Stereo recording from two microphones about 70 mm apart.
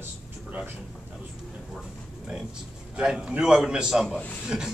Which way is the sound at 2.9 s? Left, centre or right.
Centre.